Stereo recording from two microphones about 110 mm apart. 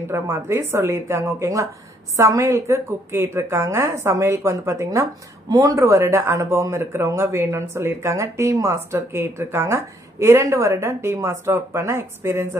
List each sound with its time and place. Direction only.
0.1 s speech: 25° right (ahead or behind)